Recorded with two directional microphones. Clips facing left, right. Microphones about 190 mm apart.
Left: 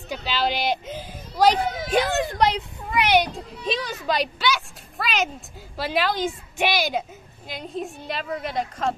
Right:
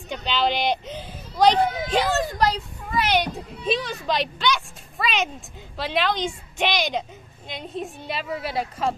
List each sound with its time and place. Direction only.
0.1 s a woman's voice: 5° left (ahead or behind)
2.3 s children playing: 20° left (ahead or behind)
3.2 s a woman's voice: centre (ahead or behind)